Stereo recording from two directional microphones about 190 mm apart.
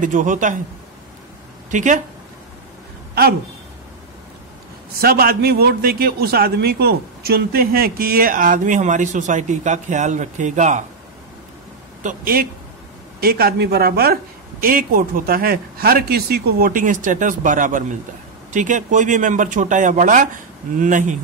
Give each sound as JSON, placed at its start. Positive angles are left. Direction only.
{"t": 0.0, "sound": "a man's voice", "side_deg": -45}
{"t": 1.7, "sound": "speech", "side_deg": -40}
{"t": 5.0, "sound": "a man's voice", "side_deg": -50}
{"t": 12.0, "sound": "a man's voice", "side_deg": -45}